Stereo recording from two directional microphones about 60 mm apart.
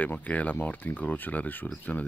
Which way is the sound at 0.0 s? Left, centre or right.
Left.